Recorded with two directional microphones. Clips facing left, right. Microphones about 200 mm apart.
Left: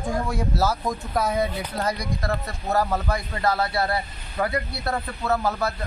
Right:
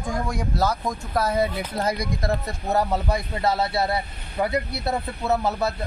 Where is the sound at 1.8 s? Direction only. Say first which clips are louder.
Right 2 dB; 20° right (ahead or behind).